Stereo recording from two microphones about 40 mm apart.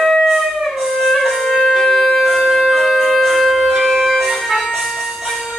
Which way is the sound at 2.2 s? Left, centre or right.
Centre.